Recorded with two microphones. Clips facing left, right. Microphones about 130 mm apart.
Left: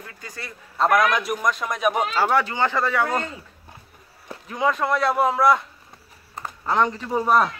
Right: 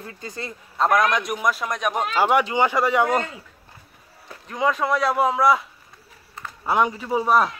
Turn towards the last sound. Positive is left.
turn(degrees=0)  # may be behind; listen again after turning